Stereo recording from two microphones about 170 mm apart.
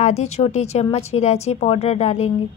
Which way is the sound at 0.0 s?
40° left (ahead or behind).